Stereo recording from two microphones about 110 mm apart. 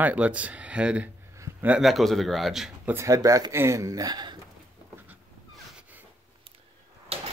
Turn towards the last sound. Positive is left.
turn(degrees=-70)  # may be behind; listen again after turning